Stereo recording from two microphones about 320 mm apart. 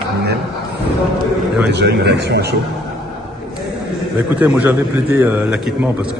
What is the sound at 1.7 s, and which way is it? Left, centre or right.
Speech, right.